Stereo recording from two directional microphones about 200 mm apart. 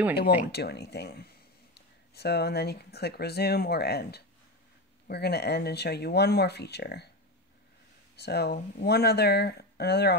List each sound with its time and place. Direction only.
0.1 s speech: 50° left (ahead or behind)
8.2 s speech: 55° left (ahead or behind)